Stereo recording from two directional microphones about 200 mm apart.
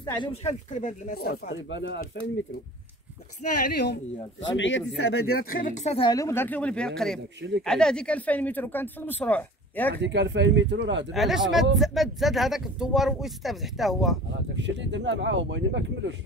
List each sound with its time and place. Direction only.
0.0 s speech: 20° left (ahead or behind); by 2.0 s 65° left (ahead or behind)
3.4 s speech: 35° left (ahead or behind)
3.7 s speech: 55° left (ahead or behind)
4.6 s speech: 70° left (ahead or behind); by 5.9 s 40° left (ahead or behind)
5.9 s speech: 20° left (ahead or behind)
9.9 s speech: 60° right (ahead or behind)
11.1 s speech: centre (ahead or behind)
14.5 s speech: 60° right (ahead or behind)